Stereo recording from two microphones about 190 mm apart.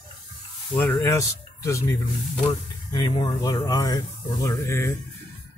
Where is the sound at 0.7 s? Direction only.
10° left (ahead or behind).